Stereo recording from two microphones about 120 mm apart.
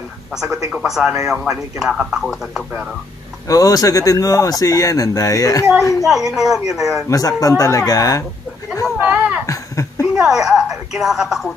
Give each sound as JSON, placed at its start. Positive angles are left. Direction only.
{"t": 0.7, "sound": "a man's voice", "side_deg": -5}
{"t": 3.4, "sound": "speech", "side_deg": 30}
{"t": 6.0, "sound": "a man's voice", "side_deg": -5}
{"t": 7.1, "sound": "speech", "side_deg": 30}
{"t": 8.9, "sound": "a sound", "side_deg": -10}
{"t": 9.5, "sound": "a sound", "side_deg": 25}
{"t": 10.1, "sound": "a man's voice", "side_deg": -5}